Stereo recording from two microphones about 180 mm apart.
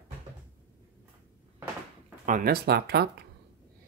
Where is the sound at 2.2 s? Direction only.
50° right (ahead or behind).